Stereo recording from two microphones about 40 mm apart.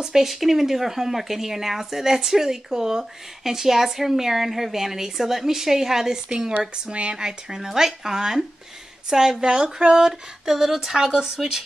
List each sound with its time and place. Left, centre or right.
0.0 s speech: centre
0.3 s speech: centre
10.4 s speech: centre